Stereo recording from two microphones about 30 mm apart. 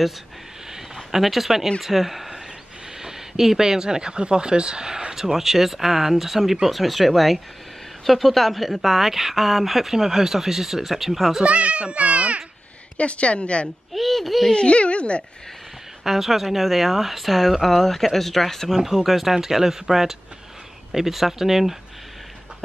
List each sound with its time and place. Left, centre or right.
0.9 s speech: centre
9.9 s speech: centre
11.4 s a child's voice: right
12.9 s speech: left
13.9 s hoot: centre
14.5 s speech: left
16.0 s speech: centre
18.8 s speech: centre
19.3 s speech: centre